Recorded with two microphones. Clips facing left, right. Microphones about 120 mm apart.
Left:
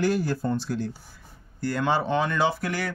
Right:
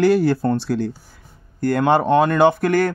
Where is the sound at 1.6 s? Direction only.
55° right (ahead or behind).